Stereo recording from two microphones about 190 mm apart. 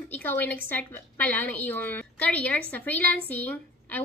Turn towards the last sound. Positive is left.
turn(degrees=10)  # may be behind; listen again after turning